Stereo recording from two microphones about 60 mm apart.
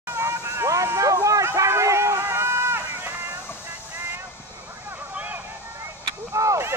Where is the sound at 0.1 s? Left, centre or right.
Right.